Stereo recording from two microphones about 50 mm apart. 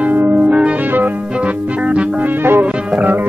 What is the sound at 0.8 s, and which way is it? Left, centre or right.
Music, right.